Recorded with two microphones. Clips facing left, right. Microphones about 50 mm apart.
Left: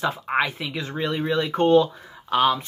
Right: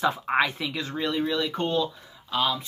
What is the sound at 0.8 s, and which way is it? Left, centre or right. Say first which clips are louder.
Speech: left 2 dB; left.